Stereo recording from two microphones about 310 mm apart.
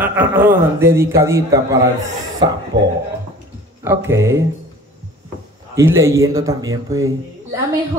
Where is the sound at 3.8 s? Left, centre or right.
Centre.